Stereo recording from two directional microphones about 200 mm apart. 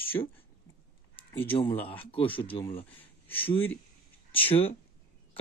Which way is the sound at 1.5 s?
25° left (ahead or behind).